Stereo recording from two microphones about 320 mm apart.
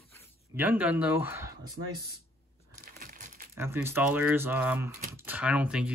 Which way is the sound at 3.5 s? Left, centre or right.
Centre.